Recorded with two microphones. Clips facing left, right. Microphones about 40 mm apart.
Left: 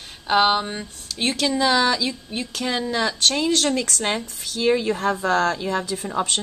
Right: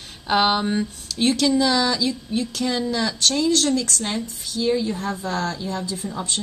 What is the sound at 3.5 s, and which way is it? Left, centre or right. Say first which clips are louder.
Speech: right 1 dB; left.